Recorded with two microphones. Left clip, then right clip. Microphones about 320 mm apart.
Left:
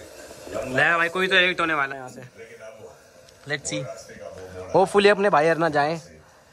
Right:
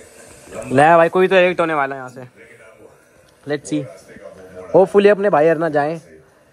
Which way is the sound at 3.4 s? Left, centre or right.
Centre.